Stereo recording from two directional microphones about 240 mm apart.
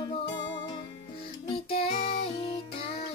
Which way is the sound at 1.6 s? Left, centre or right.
Left.